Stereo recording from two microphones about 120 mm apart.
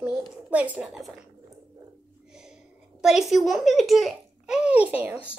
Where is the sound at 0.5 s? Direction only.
10° right (ahead or behind).